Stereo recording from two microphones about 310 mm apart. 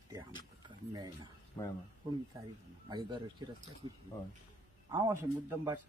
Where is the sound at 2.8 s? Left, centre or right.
Centre.